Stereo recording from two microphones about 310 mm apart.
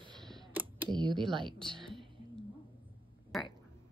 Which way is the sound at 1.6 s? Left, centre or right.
Centre.